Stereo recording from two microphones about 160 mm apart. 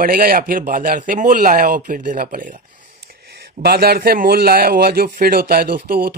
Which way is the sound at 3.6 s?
75° right (ahead or behind).